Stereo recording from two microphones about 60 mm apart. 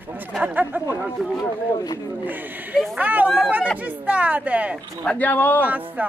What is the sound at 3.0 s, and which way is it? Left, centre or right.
A woman's voice, right.